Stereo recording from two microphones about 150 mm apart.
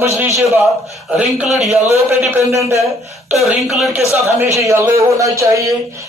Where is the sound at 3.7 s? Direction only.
Centre (ahead or behind).